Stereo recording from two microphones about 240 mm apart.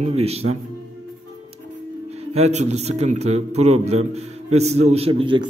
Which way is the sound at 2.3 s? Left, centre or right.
Right.